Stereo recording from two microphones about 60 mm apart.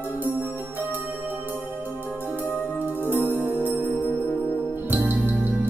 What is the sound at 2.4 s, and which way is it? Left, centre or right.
Music, left.